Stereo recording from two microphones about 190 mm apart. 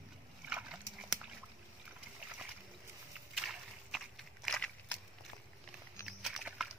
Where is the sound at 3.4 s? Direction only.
Centre (ahead or behind).